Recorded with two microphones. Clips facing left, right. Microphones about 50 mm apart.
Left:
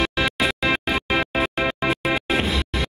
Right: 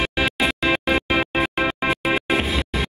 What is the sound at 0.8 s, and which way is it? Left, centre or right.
Music, right.